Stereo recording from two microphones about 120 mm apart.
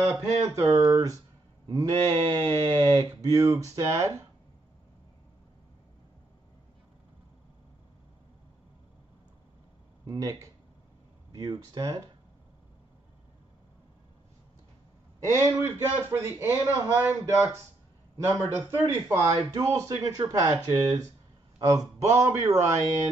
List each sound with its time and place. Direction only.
0.0 s speech: 20° right (ahead or behind)
10.0 s speech: 30° right (ahead or behind)
15.3 s speech: 20° right (ahead or behind)